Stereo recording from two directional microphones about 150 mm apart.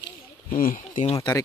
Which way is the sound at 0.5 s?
65° left (ahead or behind).